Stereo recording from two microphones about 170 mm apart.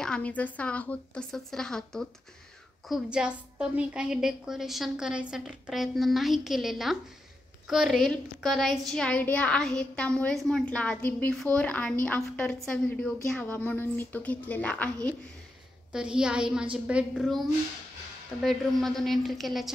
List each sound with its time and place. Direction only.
0.0 s a woman's voice: 5° left (ahead or behind)
15.9 s a woman's voice: 5° right (ahead or behind)